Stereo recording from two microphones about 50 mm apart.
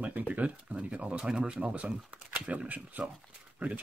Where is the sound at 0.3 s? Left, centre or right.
Right.